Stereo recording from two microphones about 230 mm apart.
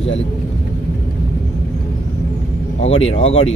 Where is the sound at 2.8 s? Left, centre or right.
Left.